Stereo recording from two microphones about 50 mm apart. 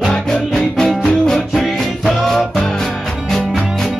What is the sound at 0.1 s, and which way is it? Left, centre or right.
Music, centre.